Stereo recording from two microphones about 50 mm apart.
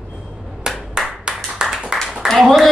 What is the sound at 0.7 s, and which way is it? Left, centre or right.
Clapping, centre.